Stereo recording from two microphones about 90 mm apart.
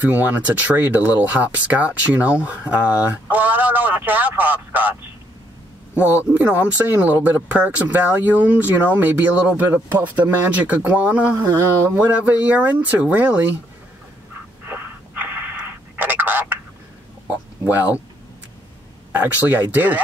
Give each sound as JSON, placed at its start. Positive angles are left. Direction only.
{"t": 0.0, "sound": "speech", "side_deg": -15}
{"t": 5.9, "sound": "speech", "side_deg": -15}
{"t": 11.3, "sound": "speech", "side_deg": -30}
{"t": 12.0, "sound": "speech", "side_deg": -15}
{"t": 14.7, "sound": "a sound", "side_deg": -25}
{"t": 17.3, "sound": "speech", "side_deg": -15}
{"t": 19.1, "sound": "speech", "side_deg": -20}